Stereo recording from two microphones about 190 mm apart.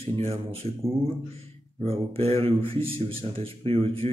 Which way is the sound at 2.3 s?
30° right (ahead or behind).